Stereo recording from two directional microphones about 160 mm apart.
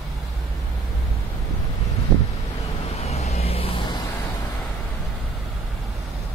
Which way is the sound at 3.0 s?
40° left (ahead or behind).